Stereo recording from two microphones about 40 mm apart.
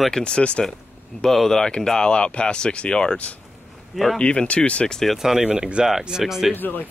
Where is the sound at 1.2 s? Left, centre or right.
Centre.